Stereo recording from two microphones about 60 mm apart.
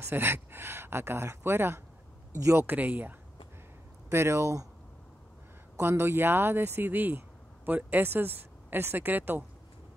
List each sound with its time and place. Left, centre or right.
0.0 s speech: right
2.3 s speech: right
2.6 s speech: right
4.1 s speech: right
5.8 s speech: right
6.9 s speech: right